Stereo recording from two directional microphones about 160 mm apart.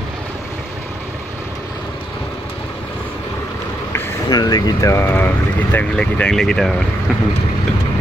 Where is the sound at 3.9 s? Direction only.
25° left (ahead or behind).